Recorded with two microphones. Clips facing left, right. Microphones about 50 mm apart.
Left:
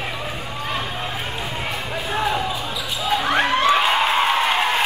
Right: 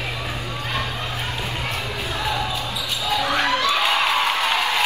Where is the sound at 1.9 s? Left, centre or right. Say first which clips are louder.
Left 6 dB; left.